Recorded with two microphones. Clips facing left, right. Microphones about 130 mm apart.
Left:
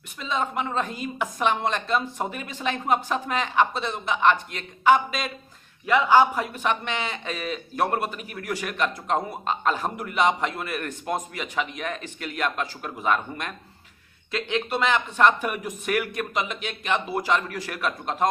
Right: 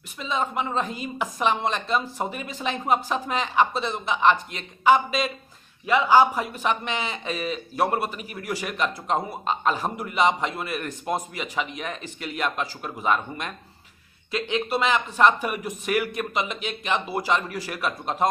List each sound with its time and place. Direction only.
0.2 s speech: centre (ahead or behind)